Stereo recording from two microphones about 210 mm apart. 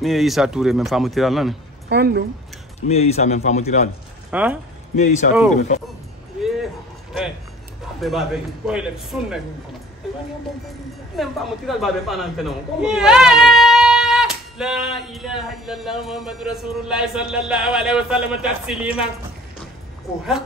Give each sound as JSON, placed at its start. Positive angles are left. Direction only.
{"t": 0.0, "sound": "speech", "side_deg": 0}
{"t": 1.9, "sound": "speech", "side_deg": -50}
{"t": 2.9, "sound": "a man's voice", "side_deg": 30}
{"t": 4.3, "sound": "speech", "side_deg": -5}
{"t": 4.9, "sound": "a man's voice", "side_deg": 35}
{"t": 8.0, "sound": "speech", "side_deg": 0}
{"t": 11.1, "sound": "speech", "side_deg": 0}